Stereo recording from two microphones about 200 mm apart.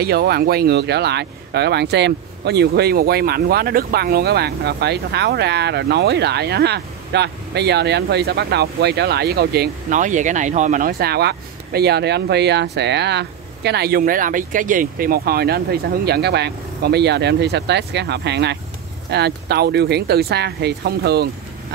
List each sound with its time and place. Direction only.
0.0 s speech: 50° right (ahead or behind)